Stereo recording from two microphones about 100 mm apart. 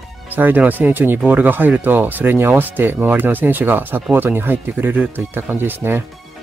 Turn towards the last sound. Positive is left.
turn(degrees=-20)  # may be behind; listen again after turning